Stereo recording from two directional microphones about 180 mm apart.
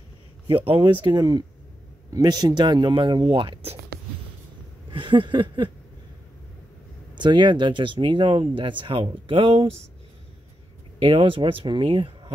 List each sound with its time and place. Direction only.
0.7 s speech: 30° right (ahead or behind)
4.9 s speech: 25° right (ahead or behind)
7.2 s speech: 25° right (ahead or behind)
11.0 s speech: 30° right (ahead or behind)